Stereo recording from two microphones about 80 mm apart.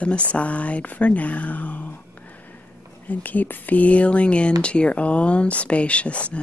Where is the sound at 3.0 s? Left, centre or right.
Centre.